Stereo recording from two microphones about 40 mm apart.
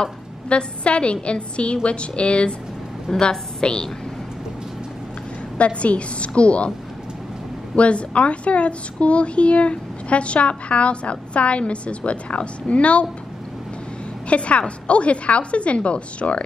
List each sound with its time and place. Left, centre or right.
0.5 s a woman's voice: left
5.6 s a woman's voice: left
7.7 s a woman's voice: left
14.3 s a woman's voice: left